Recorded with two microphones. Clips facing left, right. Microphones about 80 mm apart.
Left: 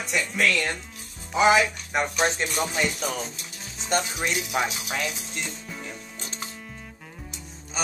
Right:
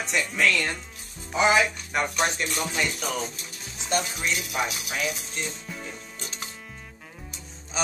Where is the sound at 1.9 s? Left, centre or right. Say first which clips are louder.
Left 2 dB; left.